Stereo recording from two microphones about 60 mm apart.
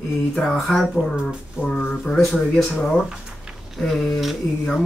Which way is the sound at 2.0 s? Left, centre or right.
Centre.